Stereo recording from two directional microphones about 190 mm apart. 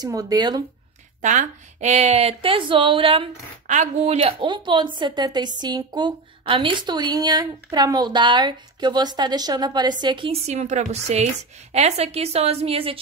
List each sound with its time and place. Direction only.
0.0 s a woman's voice: 20° right (ahead or behind)
1.2 s a woman's voice: 40° right (ahead or behind)
3.6 s a woman's voice: 40° right (ahead or behind)